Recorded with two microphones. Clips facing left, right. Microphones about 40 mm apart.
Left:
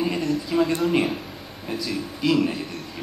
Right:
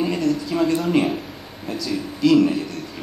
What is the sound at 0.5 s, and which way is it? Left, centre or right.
Speech, centre.